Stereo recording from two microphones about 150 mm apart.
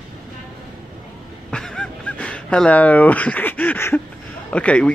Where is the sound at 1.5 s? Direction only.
5° left (ahead or behind).